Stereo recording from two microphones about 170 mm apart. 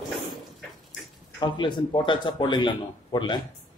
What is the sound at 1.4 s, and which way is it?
Speech, 25° left (ahead or behind).